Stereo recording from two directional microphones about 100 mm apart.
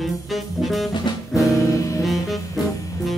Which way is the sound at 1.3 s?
30° left (ahead or behind).